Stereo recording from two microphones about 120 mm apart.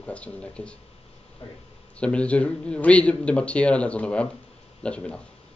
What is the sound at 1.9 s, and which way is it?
A man's voice, 10° left (ahead or behind).